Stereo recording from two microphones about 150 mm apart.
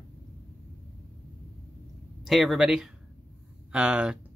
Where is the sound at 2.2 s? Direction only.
Centre (ahead or behind).